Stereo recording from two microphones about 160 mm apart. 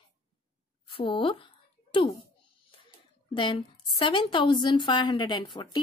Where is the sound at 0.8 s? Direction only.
30° left (ahead or behind).